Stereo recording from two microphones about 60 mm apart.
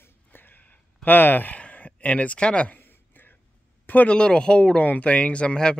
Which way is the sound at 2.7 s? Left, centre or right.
Left.